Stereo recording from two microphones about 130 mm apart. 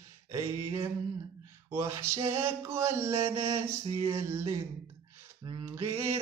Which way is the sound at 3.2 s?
20° right (ahead or behind).